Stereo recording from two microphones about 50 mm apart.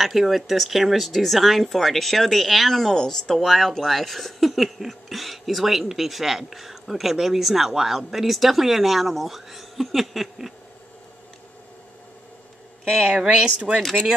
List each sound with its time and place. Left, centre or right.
0.0 s speech: centre
13.2 s speech: centre